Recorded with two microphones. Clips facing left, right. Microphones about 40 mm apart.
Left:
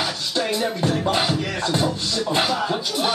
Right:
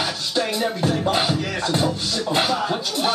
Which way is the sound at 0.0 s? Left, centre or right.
Centre.